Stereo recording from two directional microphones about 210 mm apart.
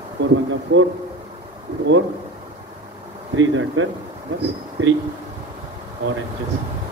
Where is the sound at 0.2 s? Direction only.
50° right (ahead or behind).